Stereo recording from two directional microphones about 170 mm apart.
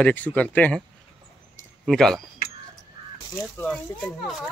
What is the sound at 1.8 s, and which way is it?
Speech, centre (ahead or behind).